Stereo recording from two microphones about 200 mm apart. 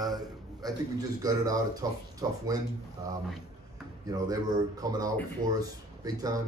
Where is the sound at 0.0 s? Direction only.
20° right (ahead or behind).